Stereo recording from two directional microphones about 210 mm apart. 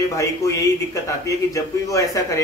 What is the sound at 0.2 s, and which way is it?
Speech, 15° left (ahead or behind).